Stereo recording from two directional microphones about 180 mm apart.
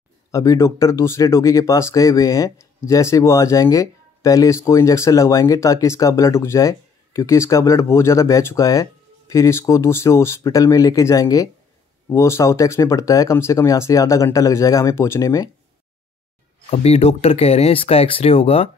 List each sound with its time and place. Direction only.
0.3 s speech: 15° left (ahead or behind)
16.7 s speech: 35° left (ahead or behind)